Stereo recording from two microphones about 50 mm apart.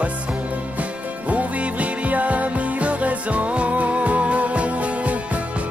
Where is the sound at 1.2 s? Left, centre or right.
Right.